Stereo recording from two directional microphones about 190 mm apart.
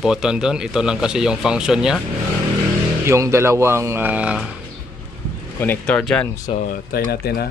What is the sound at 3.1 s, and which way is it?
Speech, 15° right (ahead or behind).